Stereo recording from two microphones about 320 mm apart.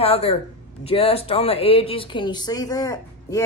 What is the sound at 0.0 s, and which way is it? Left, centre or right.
A man's voice, centre.